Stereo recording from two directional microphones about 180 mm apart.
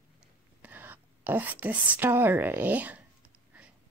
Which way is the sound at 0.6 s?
10° right (ahead or behind).